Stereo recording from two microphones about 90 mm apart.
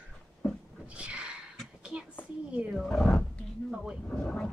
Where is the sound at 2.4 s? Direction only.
10° right (ahead or behind).